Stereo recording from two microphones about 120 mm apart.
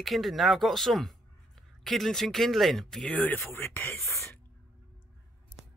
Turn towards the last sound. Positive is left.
turn(degrees=20)  # may be behind; listen again after turning